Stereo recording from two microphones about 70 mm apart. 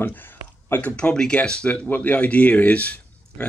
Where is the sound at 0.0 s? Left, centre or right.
Left.